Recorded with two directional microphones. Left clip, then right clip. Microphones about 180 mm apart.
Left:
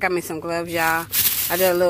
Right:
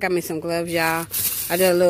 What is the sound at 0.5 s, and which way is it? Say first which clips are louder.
Speech: left 1 dB; 60° right (ahead or behind).